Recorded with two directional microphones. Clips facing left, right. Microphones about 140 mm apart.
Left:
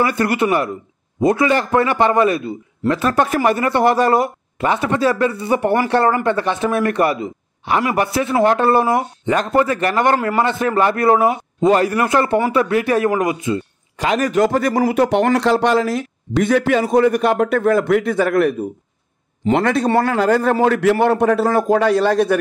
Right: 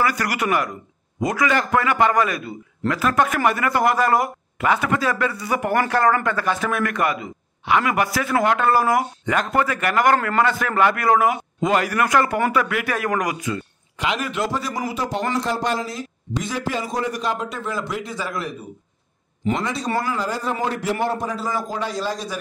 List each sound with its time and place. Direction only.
0.0 s a man's voice: 25° left (ahead or behind)
13.9 s a man's voice: 40° left (ahead or behind); by 22.4 s 60° left (ahead or behind)